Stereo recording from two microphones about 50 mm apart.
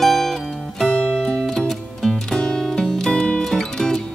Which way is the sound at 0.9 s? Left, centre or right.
Centre.